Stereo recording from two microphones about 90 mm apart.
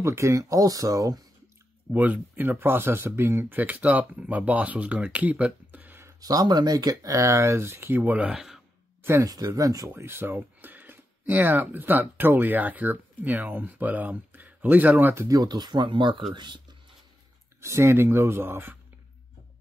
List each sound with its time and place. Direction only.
0.0 s speech: 35° right (ahead or behind)
1.9 s speech: 20° right (ahead or behind)
6.2 s speech: 45° right (ahead or behind); by 8.3 s 20° right (ahead or behind)
8.3 s speech: 5° right (ahead or behind)
9.0 s speech: 30° right (ahead or behind)
9.3 s speech: 40° right (ahead or behind); by 15.2 s 20° right (ahead or behind)
15.2 s speech: 45° right (ahead or behind)
17.6 s speech: 30° right (ahead or behind)